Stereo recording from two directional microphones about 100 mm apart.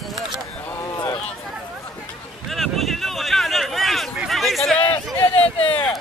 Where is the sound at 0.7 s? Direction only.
35° left (ahead or behind).